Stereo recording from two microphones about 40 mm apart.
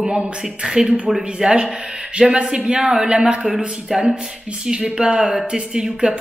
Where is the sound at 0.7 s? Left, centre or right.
Centre.